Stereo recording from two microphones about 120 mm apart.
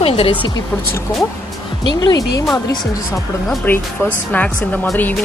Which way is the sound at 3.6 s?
15° left (ahead or behind).